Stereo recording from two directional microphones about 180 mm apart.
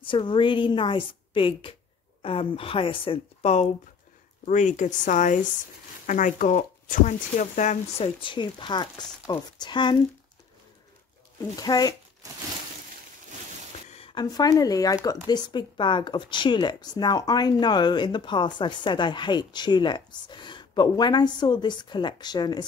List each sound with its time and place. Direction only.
0.0 s a woman's voice: 25° left (ahead or behind)
4.5 s speech: 45° left (ahead or behind); by 9.9 s 25° left (ahead or behind)
11.5 s speech: 20° left (ahead or behind)
13.8 s speech: 30° left (ahead or behind)